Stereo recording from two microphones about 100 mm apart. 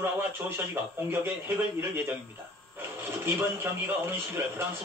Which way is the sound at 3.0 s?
25° right (ahead or behind).